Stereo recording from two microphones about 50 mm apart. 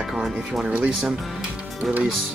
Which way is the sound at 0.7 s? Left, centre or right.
Right.